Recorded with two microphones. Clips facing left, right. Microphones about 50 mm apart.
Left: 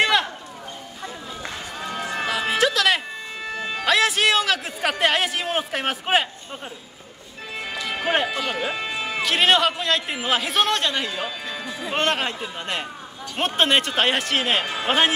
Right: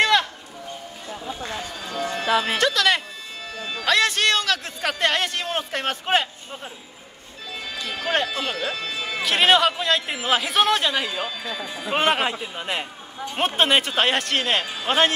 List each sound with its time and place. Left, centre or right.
0.0 s a sound: centre
1.8 s run: left
2.6 s speech: centre
3.4 s music: left
3.8 s a man's voice: centre
7.5 s music: left
8.3 s speech: centre
9.2 s speech: centre
11.5 s a man's voice: centre
11.9 s a man's voice: centre